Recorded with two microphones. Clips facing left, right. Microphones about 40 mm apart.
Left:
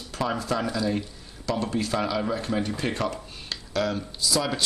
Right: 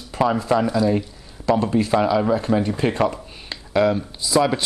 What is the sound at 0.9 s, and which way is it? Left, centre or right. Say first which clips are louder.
Speech: right 6 dB; right.